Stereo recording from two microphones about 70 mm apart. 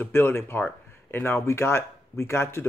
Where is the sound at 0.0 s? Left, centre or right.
Left.